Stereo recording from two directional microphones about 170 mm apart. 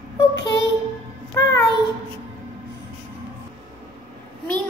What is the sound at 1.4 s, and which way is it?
Speech, 15° left (ahead or behind).